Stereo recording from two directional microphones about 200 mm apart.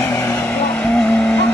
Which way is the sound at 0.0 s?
15° left (ahead or behind).